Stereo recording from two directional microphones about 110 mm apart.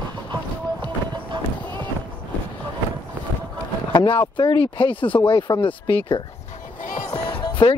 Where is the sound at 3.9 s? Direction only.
45° left (ahead or behind).